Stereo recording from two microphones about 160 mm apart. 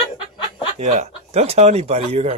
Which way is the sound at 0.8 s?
45° right (ahead or behind).